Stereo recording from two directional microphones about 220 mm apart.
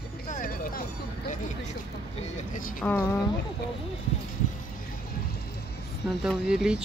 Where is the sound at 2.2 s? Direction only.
35° left (ahead or behind).